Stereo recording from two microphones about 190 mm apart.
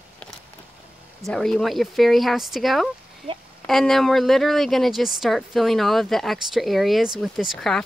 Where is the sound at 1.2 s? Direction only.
Centre (ahead or behind).